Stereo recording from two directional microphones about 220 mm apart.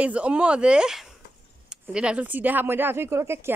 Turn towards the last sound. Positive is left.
turn(degrees=-10)  # may be behind; listen again after turning